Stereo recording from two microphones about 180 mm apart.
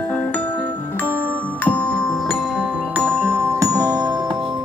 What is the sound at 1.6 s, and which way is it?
Music, 5° left (ahead or behind).